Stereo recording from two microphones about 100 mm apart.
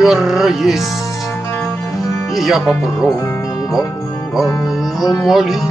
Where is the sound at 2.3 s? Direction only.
5° right (ahead or behind).